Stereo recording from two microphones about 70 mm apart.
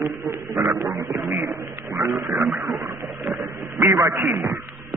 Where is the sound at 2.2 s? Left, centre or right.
Right.